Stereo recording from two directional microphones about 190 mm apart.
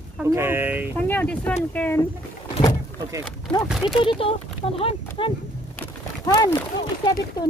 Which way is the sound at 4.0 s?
30° left (ahead or behind).